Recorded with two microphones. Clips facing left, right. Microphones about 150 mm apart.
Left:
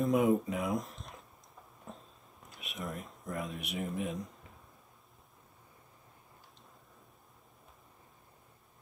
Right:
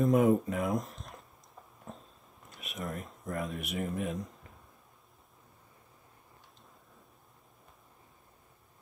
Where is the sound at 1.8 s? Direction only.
Centre (ahead or behind).